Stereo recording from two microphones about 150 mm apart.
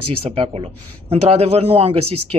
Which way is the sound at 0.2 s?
40° right (ahead or behind).